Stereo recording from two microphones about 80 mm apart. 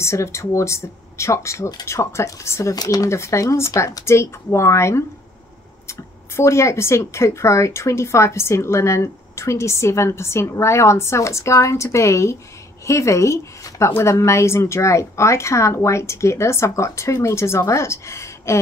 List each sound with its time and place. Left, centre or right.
0.0 s speech: left
2.7 s speech: left
3.1 s speech: left